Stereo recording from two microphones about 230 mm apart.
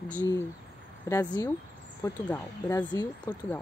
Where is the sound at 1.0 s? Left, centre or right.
Centre.